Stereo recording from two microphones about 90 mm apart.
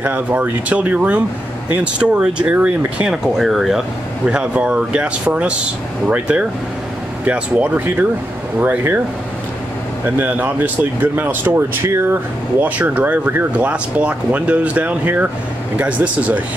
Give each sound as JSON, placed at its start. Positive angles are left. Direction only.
{"t": 0.0, "sound": "speech", "side_deg": -20}
{"t": 3.3, "sound": "speech", "side_deg": 0}
{"t": 10.0, "sound": "speech", "side_deg": -20}